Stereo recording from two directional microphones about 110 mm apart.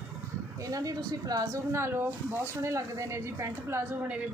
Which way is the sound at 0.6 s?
35° right (ahead or behind).